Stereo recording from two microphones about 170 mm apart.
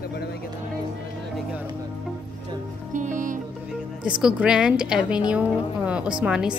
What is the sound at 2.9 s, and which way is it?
Music, 50° right (ahead or behind).